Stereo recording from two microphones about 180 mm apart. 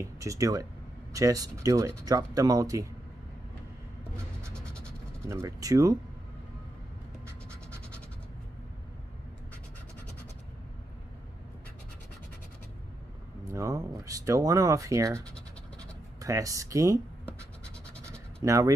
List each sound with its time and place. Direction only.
0.0 s speech: 15° right (ahead or behind)
4.6 s vehicle: 5° left (ahead or behind)
5.3 s speech: 20° right (ahead or behind)
13.5 s speech: 15° right (ahead or behind)
18.4 s speech: 20° right (ahead or behind)